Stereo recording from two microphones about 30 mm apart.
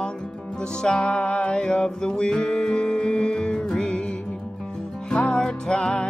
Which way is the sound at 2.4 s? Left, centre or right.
Left.